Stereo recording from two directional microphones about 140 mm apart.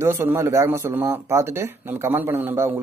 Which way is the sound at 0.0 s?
15° right (ahead or behind).